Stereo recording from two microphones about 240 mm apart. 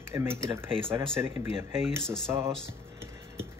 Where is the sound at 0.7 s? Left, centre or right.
Right.